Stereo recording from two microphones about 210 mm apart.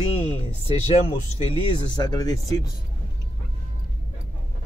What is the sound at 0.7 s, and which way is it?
Speech, 25° left (ahead or behind).